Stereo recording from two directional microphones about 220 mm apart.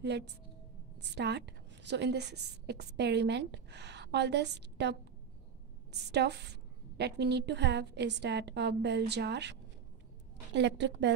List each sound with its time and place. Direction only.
0.0 s a woman's voice: 50° right (ahead or behind)